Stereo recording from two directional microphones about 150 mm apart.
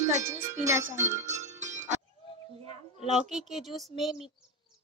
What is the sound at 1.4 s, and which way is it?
Music, 50° right (ahead or behind).